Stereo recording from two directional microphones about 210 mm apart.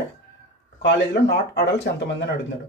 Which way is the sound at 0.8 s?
55° left (ahead or behind).